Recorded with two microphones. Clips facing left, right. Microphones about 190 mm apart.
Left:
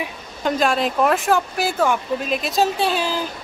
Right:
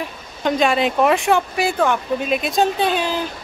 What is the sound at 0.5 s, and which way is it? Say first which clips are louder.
Speech: right 2 dB; centre (ahead or behind).